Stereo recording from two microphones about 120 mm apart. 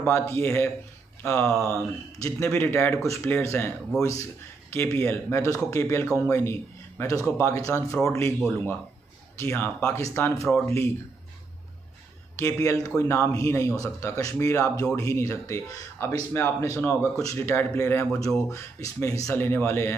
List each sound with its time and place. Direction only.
0.0 s a man's voice: 20° left (ahead or behind)
9.4 s a man's voice: 20° left (ahead or behind)
12.4 s a man's voice: 25° left (ahead or behind)